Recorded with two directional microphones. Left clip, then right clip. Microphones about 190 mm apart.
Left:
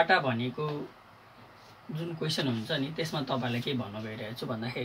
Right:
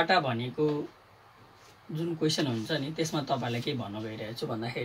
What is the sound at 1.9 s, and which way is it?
Speech, 20° right (ahead or behind).